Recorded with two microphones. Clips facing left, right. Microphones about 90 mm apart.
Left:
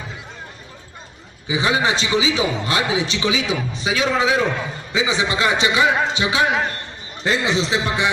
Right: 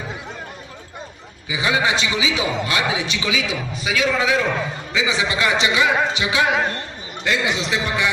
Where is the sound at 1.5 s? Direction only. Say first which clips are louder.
Left 1 dB; 30° left (ahead or behind).